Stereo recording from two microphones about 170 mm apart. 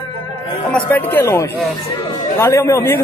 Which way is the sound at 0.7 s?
10° left (ahead or behind).